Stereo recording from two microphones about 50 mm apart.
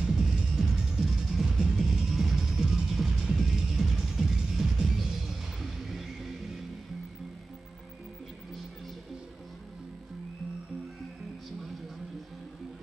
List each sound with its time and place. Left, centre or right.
0.0 s music: centre